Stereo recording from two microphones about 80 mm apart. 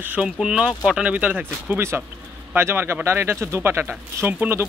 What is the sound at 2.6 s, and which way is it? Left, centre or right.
Speech, right.